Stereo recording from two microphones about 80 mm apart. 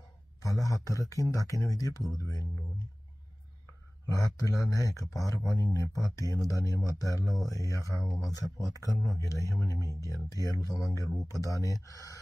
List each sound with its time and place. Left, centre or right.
0.4 s a man's voice: left
4.1 s speech: left